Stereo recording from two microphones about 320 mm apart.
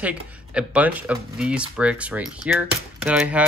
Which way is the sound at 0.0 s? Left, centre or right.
Centre.